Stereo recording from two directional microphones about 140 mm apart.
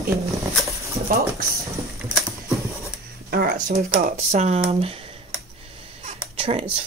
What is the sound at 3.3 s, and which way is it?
Speech, 90° right.